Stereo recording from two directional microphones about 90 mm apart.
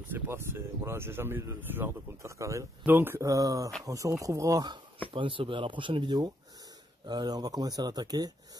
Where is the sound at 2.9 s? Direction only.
25° right (ahead or behind).